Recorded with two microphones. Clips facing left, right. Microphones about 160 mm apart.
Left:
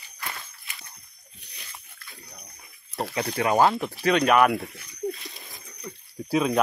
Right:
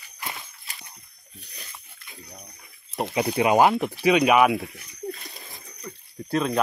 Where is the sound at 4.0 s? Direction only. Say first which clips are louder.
Right 1 dB; 5° right (ahead or behind).